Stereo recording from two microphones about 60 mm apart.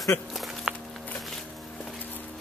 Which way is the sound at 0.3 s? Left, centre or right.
Centre.